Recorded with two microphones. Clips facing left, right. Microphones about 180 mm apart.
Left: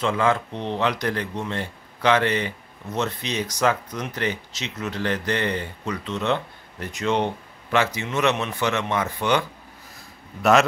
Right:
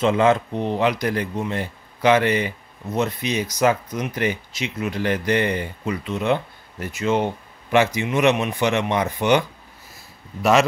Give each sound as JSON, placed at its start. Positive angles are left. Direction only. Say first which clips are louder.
{"t": 0.0, "sound": "speech", "louder": "right 5 dB", "side_deg": -20}
{"t": 0.5, "sound": "speech", "louder": "right 4 dB", "side_deg": -10}